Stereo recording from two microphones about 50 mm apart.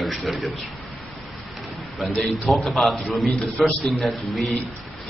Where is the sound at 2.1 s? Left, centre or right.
Centre.